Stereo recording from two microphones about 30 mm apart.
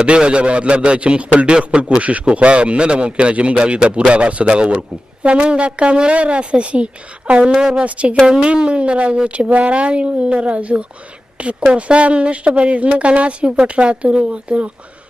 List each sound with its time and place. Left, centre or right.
0.0 s a man's voice: right
7.5 s speech: centre
7.8 s speech: right
8.5 s a man's voice: right